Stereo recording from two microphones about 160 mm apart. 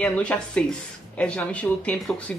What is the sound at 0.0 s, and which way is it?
Speech, 10° left (ahead or behind).